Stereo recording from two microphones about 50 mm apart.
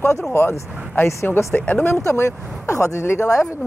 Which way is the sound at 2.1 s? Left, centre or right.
Left.